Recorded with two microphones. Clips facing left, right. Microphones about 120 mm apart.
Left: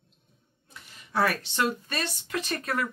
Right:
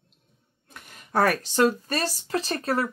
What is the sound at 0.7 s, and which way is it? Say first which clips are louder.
A woman's voice: right 5 dB; 50° right (ahead or behind).